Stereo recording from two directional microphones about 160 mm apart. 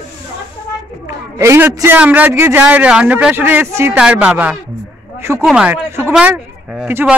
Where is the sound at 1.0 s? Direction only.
20° right (ahead or behind).